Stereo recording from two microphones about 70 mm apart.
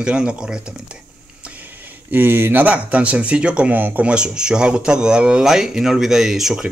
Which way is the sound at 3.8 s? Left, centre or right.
Right.